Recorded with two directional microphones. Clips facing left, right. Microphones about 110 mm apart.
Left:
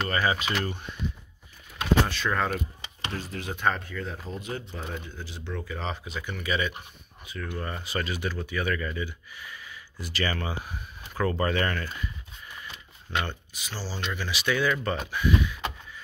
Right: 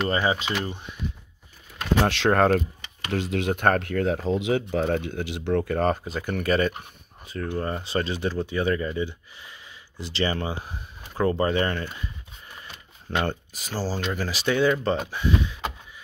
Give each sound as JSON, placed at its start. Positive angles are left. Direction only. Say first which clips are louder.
{"t": 0.1, "sound": "speech", "louder": "right 2 dB", "side_deg": -25}
{"t": 2.0, "sound": "speech", "louder": "right 8 dB", "side_deg": -75}
{"t": 3.1, "sound": "speech", "louder": "right 9 dB", "side_deg": -90}
{"t": 7.2, "sound": "speech", "louder": "right 6 dB", "side_deg": -35}
{"t": 13.3, "sound": "speech", "louder": "right 7 dB", "side_deg": -40}